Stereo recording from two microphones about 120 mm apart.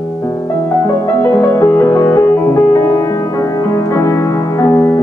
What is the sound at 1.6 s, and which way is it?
Music, 20° left (ahead or behind).